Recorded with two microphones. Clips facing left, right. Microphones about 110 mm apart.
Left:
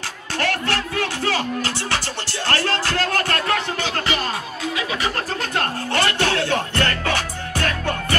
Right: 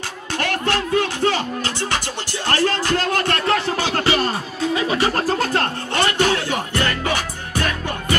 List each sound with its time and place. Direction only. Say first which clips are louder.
0.4 s music: right 1 dB; 20° right (ahead or behind)
3.4 s music: right 3 dB; 35° right (ahead or behind)
5.9 s music: right 2 dB; 15° right (ahead or behind)